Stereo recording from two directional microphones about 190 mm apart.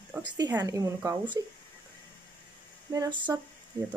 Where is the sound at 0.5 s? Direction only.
15° right (ahead or behind).